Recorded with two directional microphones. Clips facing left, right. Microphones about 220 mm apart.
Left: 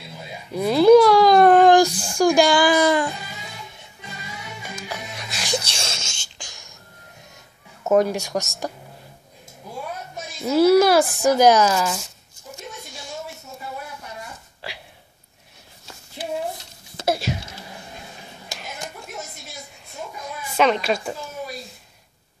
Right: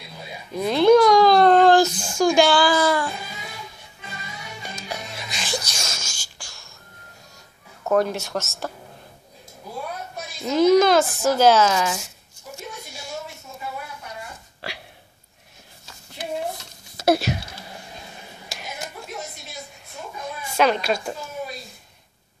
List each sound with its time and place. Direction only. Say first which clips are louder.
0.5 s a sound: left 3 dB; 10° left (ahead or behind)
5.6 s sneeze: left 2 dB; 30° left (ahead or behind)
7.8 s a woman's voice: left 3 dB; 20° left (ahead or behind)
10.4 s a woman's voice: left 1 dB; 10° left (ahead or behind)
11.7 s a child's voice: even; centre (ahead or behind)
17.0 s speech: right 4 dB; 65° right (ahead or behind)
20.5 s a child's voice: left 1 dB; centre (ahead or behind)